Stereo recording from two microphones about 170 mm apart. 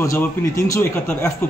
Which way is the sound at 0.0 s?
15° left (ahead or behind).